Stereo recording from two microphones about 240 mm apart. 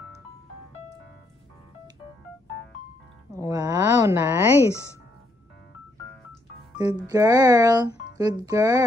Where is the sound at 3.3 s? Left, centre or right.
Centre.